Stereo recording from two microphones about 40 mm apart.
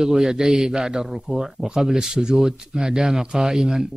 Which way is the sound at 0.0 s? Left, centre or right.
Centre.